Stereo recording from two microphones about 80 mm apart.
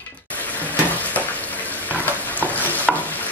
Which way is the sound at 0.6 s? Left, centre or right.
Left.